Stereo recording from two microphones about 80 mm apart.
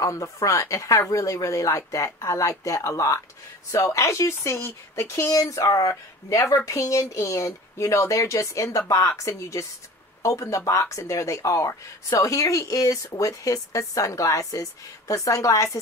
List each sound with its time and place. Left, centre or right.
0.0 s speech: left